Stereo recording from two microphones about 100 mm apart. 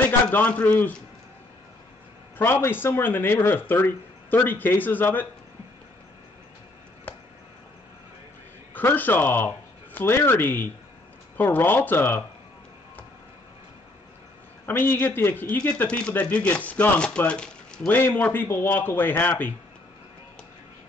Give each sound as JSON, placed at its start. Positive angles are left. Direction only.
{"t": 0.3, "sound": "a man's voice", "side_deg": 15}
{"t": 2.3, "sound": "speech", "side_deg": 20}
{"t": 8.7, "sound": "speech", "side_deg": 20}
{"t": 14.7, "sound": "speech", "side_deg": 20}